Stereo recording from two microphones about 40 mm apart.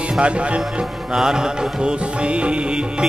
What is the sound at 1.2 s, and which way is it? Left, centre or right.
Music, centre.